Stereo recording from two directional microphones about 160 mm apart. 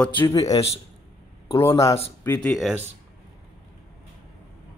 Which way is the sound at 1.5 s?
35° left (ahead or behind).